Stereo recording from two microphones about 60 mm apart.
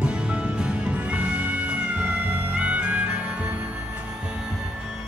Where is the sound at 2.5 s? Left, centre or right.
Right.